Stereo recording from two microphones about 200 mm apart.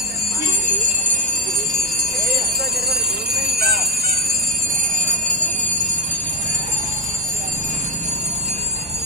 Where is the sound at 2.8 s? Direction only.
50° right (ahead or behind).